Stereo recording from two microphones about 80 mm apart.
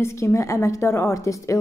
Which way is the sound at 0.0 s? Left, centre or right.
Left.